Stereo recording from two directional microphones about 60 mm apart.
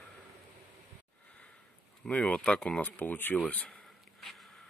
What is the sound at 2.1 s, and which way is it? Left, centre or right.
Speech, centre.